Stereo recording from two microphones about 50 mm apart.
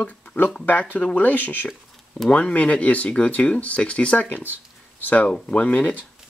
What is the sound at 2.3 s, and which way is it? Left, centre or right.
Speech, left.